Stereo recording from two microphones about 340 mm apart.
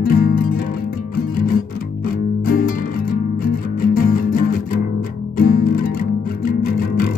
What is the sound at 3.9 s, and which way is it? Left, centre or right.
Music, left.